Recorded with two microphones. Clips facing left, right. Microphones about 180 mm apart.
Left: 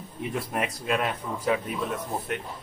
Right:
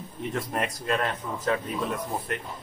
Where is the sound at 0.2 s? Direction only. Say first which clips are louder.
Even; 10° left (ahead or behind).